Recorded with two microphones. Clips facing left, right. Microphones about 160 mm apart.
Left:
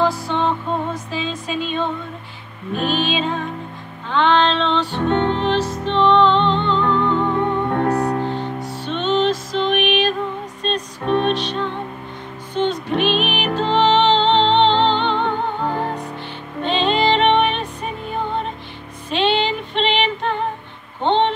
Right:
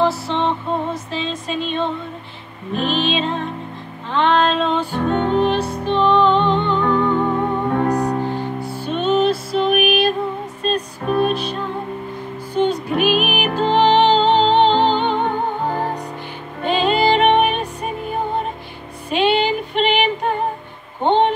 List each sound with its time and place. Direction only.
0.0 s music: centre (ahead or behind)
6.9 s music: 50° right (ahead or behind)
7.9 s music: 10° right (ahead or behind)
16.6 s music: 5° right (ahead or behind)
21.0 s a sound: 10° right (ahead or behind)